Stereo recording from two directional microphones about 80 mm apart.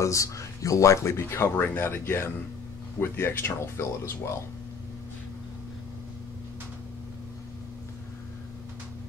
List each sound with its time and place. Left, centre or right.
0.0 s speech: left